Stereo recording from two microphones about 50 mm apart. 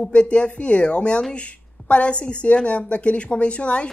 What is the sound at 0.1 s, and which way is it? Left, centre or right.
Speech, left.